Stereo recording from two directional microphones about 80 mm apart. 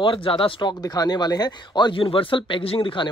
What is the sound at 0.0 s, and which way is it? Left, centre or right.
Speech, left.